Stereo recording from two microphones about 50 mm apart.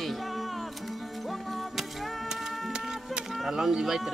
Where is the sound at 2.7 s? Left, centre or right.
Centre.